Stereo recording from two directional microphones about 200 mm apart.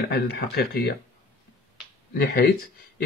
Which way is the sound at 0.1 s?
50° left (ahead or behind).